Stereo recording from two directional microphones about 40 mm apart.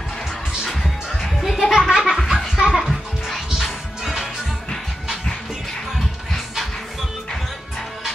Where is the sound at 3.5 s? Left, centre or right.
Centre.